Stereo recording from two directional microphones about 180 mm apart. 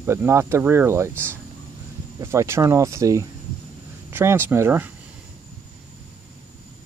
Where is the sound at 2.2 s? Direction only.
15° right (ahead or behind).